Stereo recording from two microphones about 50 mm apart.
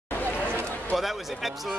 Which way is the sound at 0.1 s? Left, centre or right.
Left.